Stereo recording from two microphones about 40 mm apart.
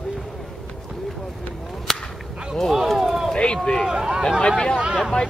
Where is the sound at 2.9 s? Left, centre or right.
Centre.